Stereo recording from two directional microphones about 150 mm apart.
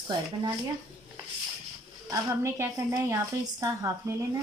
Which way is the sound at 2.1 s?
20° right (ahead or behind).